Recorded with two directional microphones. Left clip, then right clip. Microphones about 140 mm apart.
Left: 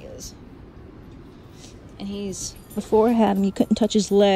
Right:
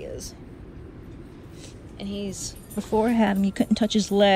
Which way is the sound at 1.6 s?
30° left (ahead or behind).